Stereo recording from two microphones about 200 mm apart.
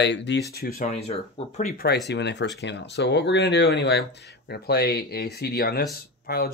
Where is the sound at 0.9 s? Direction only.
30° left (ahead or behind).